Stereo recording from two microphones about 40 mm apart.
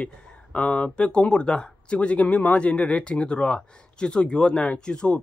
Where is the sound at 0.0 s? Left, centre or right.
Left.